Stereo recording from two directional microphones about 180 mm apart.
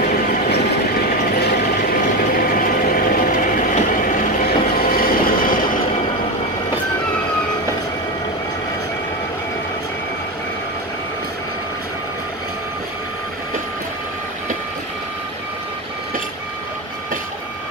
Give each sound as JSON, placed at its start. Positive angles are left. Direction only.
{"t": 1.1, "sound": "vehicle", "side_deg": 60}